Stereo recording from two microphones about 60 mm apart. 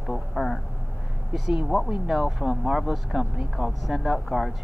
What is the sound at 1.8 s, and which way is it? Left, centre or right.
Speech, centre.